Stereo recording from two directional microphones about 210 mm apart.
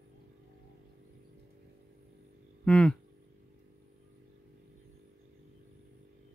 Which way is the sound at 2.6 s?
5° left (ahead or behind).